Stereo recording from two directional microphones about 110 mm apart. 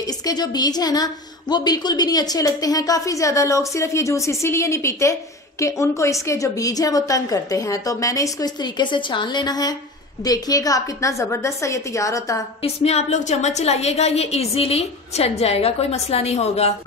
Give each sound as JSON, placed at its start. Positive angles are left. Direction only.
{"t": 0.0, "sound": "a woman's voice", "side_deg": 35}
{"t": 12.6, "sound": "a woman's voice", "side_deg": 75}